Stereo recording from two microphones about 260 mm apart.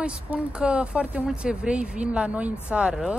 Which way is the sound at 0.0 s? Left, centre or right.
Centre.